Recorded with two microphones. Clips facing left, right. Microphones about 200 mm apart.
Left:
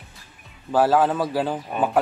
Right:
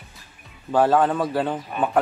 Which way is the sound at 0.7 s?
5° left (ahead or behind).